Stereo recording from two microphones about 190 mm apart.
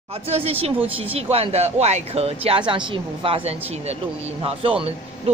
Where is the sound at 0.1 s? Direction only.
30° right (ahead or behind).